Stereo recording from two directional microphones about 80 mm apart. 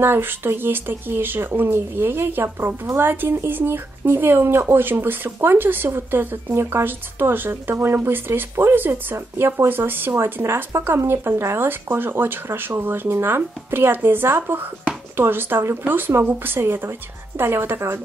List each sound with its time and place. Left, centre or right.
0.0 s speech: right